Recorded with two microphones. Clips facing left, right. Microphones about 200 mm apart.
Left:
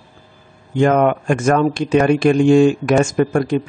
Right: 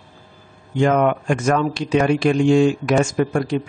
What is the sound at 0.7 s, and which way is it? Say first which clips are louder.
Speech: left 3 dB; 50° left (ahead or behind).